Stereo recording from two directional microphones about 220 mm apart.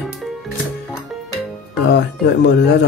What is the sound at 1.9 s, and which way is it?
Speech, 50° left (ahead or behind).